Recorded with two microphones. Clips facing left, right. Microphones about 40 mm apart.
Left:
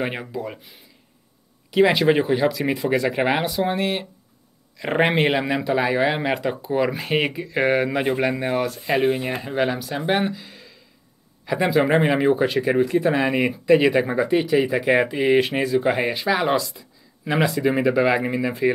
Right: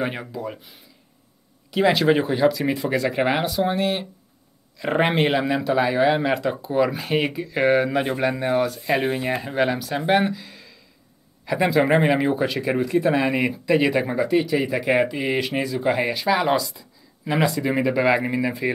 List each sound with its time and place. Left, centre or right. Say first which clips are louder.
0.0 s speech: even; centre
1.7 s speech: left 1 dB; centre